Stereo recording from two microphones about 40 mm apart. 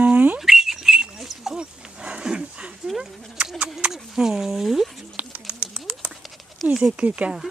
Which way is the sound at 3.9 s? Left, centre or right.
Centre.